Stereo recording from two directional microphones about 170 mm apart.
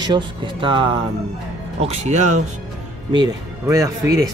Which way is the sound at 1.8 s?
40° right (ahead or behind).